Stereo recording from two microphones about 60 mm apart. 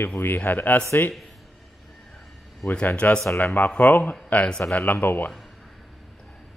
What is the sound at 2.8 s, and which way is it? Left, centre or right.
A man's voice, left.